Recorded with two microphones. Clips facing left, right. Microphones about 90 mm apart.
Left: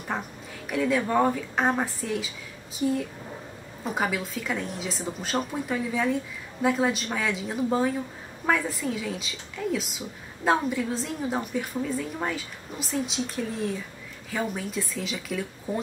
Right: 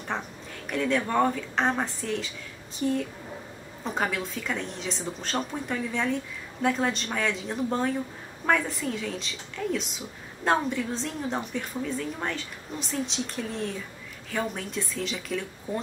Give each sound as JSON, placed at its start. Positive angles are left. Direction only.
{"t": 0.1, "sound": "a woman's voice", "side_deg": 5}